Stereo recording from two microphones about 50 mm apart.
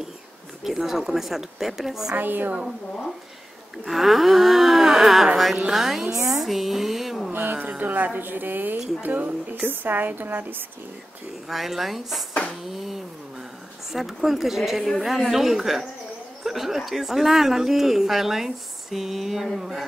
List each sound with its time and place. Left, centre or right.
0.7 s a woman's voice: centre
2.1 s a woman's voice: right
3.7 s a woman's voice: centre
6.4 s a sound: centre
7.3 s a woman's voice: right
11.4 s a woman's voice: centre
12.6 s a sound: centre
13.9 s a woman's voice: centre